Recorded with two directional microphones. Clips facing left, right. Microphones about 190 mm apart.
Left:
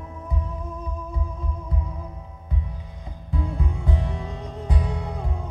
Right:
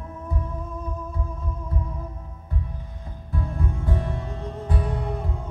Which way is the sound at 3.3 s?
15° left (ahead or behind).